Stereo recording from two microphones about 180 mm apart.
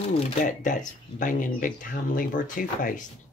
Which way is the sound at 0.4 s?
45° left (ahead or behind).